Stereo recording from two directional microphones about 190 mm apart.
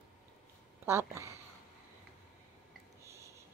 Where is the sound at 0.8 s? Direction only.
15° right (ahead or behind).